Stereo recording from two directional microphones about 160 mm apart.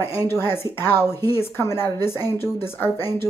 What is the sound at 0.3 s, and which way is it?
Speech, 15° left (ahead or behind).